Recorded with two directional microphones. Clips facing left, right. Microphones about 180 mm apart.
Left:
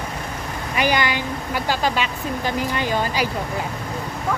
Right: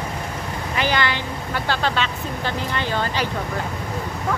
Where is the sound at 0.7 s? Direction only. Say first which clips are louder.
Left 2 dB; 15° left (ahead or behind).